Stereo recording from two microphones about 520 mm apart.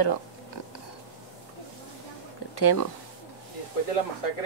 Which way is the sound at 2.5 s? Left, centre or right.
Left.